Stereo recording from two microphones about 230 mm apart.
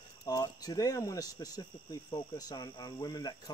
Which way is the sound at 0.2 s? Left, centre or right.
Centre.